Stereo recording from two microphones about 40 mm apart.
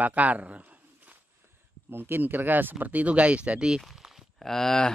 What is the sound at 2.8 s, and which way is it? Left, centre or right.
Speech, right.